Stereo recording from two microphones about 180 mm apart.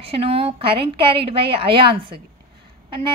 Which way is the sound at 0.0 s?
35° right (ahead or behind).